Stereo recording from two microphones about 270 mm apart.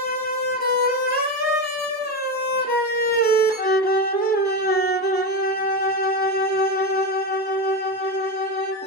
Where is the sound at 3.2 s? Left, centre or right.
Left.